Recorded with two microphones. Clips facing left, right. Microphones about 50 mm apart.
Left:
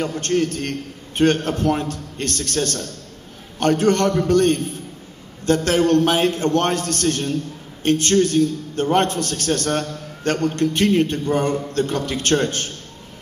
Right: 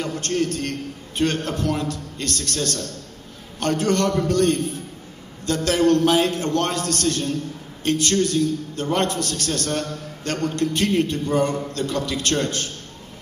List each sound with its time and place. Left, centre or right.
0.0 s a man's voice: left